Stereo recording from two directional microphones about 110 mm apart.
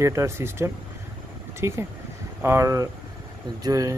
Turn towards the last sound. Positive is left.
turn(degrees=-30)  # may be behind; listen again after turning